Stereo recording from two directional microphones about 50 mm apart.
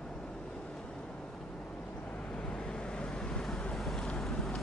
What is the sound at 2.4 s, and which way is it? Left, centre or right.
Vehicle, centre.